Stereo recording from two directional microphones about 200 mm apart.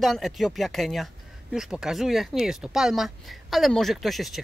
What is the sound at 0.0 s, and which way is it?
Speech, centre (ahead or behind).